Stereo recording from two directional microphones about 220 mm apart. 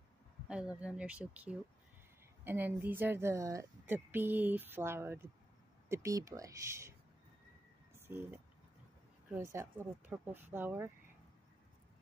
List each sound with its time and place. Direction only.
0.5 s speech: 5° right (ahead or behind)
7.9 s a sound: 10° right (ahead or behind)
9.3 s speech: 10° right (ahead or behind)